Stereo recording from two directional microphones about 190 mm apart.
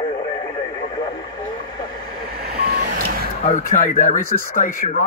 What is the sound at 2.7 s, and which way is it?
Reversing beeps, 50° right (ahead or behind).